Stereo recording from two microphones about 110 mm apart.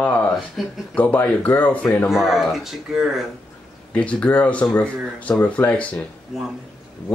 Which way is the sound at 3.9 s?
10° left (ahead or behind).